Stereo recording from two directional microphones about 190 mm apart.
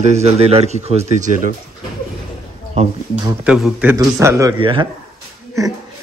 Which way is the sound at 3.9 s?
15° right (ahead or behind).